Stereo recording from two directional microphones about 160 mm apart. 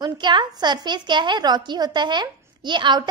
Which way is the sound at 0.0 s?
30° right (ahead or behind).